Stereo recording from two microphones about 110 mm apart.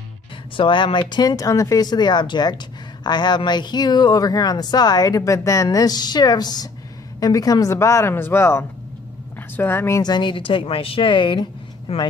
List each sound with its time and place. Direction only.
0.6 s speech: 50° left (ahead or behind); by 10.0 s 25° left (ahead or behind)
10.0 s a woman's voice: 45° left (ahead or behind)
11.9 s speech: 60° left (ahead or behind)